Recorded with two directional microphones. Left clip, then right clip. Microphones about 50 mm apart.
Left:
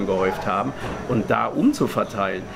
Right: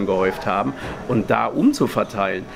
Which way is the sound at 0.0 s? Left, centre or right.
Right.